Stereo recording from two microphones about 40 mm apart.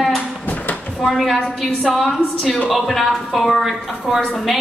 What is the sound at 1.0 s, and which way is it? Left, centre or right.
Speech, centre.